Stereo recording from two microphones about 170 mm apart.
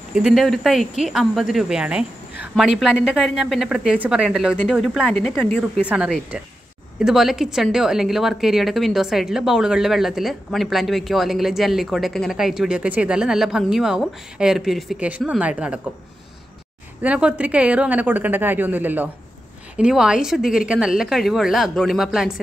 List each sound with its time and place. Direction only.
0.1 s a woman's voice: centre (ahead or behind)
17.0 s a woman's voice: 10° right (ahead or behind)